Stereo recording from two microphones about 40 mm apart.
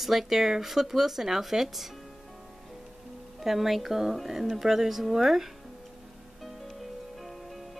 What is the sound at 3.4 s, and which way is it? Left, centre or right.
Speech, centre.